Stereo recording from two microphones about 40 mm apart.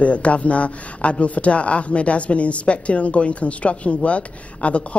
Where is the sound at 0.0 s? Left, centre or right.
Left.